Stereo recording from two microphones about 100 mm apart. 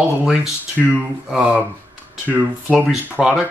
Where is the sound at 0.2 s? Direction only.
5° right (ahead or behind).